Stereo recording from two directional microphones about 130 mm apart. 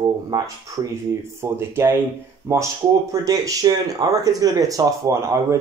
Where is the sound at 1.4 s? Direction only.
20° right (ahead or behind).